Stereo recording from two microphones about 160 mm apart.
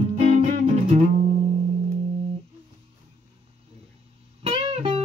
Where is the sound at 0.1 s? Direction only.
40° right (ahead or behind).